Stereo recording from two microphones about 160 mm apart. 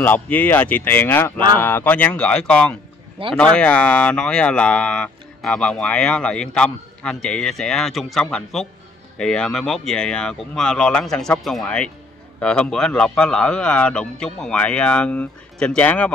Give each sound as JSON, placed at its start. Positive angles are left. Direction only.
{"t": 0.0, "sound": "speech", "side_deg": 10}
{"t": 3.2, "sound": "speech", "side_deg": -35}
{"t": 3.5, "sound": "speech", "side_deg": 5}